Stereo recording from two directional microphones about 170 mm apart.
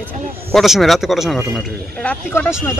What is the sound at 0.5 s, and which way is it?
Speech, centre (ahead or behind).